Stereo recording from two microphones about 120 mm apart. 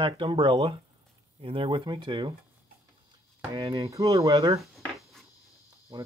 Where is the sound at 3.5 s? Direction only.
30° right (ahead or behind).